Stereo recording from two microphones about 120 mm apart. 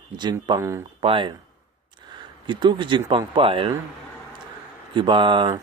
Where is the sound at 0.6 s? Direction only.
25° right (ahead or behind).